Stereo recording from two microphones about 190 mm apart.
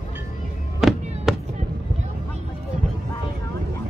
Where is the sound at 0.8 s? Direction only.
Centre (ahead or behind).